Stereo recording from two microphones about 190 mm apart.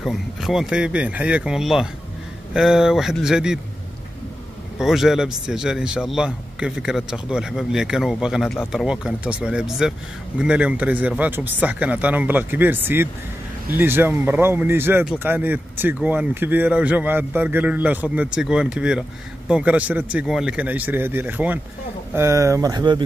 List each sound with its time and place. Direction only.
0.0 s a man's voice: centre (ahead or behind)
4.7 s a man's voice: centre (ahead or behind); by 23.0 s 25° right (ahead or behind)